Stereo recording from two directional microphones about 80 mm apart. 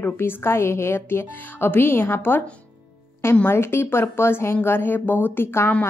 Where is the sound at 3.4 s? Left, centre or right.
Left.